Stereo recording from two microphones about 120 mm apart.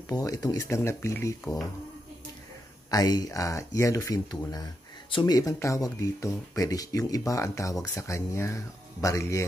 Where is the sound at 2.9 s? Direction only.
30° left (ahead or behind).